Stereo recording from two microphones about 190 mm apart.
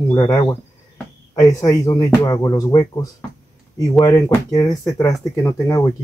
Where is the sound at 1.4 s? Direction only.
20° left (ahead or behind).